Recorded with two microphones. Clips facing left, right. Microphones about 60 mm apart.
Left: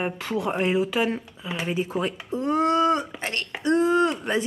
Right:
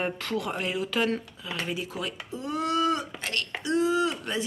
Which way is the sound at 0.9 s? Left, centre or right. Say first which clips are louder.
Left 2 dB; centre.